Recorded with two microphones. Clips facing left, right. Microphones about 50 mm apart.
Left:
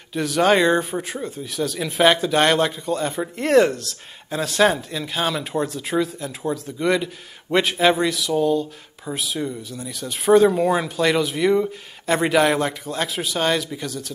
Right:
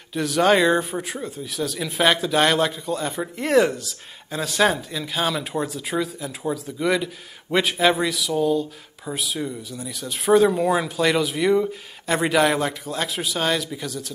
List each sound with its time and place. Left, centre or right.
0.1 s speech: centre